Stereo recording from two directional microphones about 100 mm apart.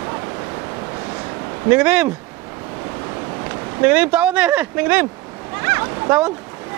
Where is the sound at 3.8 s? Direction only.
15° right (ahead or behind).